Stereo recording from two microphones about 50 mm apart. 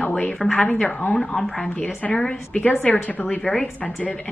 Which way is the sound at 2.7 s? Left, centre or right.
Left.